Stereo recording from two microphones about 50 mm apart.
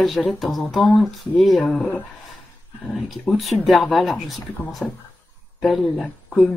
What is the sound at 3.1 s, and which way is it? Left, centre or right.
Speech, centre.